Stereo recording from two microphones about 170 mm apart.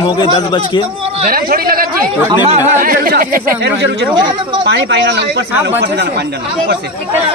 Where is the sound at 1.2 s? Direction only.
60° right (ahead or behind).